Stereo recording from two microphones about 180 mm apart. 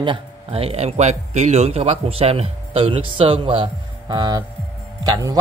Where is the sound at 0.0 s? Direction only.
30° right (ahead or behind).